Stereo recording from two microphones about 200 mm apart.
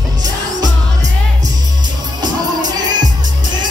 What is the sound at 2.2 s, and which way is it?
Music, 20° right (ahead or behind).